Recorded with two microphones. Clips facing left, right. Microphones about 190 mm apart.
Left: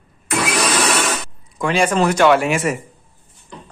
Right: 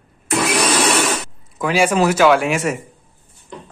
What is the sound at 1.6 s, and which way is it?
Speech, 5° right (ahead or behind).